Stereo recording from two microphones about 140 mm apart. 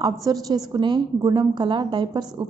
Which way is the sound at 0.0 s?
25° right (ahead or behind).